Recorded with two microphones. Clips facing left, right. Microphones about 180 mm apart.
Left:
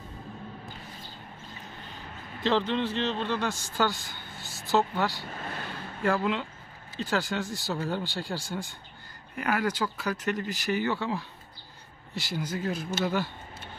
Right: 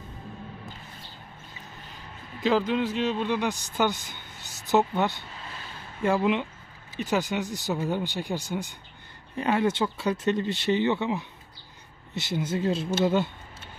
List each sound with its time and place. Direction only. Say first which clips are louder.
2.4 s a man's voice: right 2 dB; 10° right (ahead or behind)
5.3 s vehicle: left 5 dB; 55° left (ahead or behind)
6.0 s a man's voice: right 3 dB; 20° right (ahead or behind)